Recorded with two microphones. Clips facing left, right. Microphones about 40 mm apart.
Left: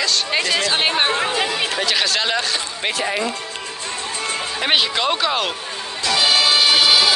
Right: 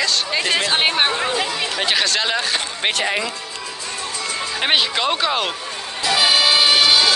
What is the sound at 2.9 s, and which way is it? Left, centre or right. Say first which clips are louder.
Speech: even; right.